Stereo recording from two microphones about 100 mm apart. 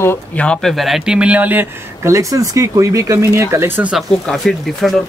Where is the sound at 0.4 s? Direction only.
10° left (ahead or behind); by 1.7 s 15° right (ahead or behind).